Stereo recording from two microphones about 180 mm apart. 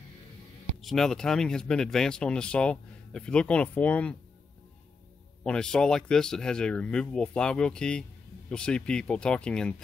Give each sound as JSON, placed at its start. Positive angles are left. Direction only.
{"t": 0.7, "sound": "speech", "side_deg": 0}
{"t": 5.4, "sound": "speech", "side_deg": 5}